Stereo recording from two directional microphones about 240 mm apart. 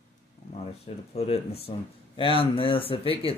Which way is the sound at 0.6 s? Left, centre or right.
Left.